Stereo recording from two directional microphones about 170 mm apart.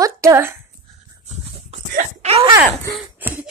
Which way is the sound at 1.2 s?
40° right (ahead or behind).